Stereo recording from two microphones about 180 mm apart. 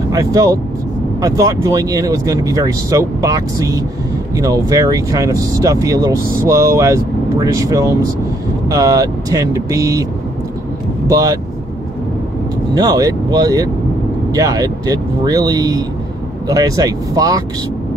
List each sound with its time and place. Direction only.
0.1 s speech: 20° right (ahead or behind)
11.1 s speech: 20° right (ahead or behind)
12.7 s speech: 20° right (ahead or behind)